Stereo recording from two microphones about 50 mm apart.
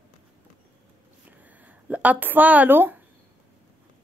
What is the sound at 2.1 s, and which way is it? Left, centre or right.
Speech, right.